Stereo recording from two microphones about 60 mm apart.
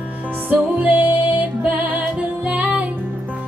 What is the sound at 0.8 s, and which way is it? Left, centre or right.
Music, right.